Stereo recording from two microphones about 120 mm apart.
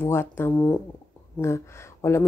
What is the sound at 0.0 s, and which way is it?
Speech, 20° left (ahead or behind).